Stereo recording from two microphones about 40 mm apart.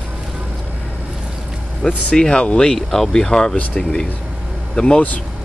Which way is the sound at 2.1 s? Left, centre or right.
Left.